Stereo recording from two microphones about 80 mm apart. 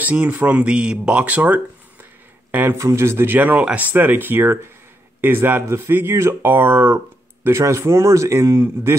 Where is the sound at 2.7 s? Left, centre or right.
Right.